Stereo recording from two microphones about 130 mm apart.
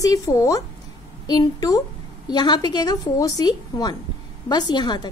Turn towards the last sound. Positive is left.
turn(degrees=35)  # may be behind; listen again after turning